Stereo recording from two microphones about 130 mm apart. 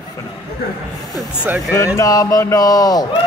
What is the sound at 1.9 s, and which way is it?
Speech, 25° left (ahead or behind).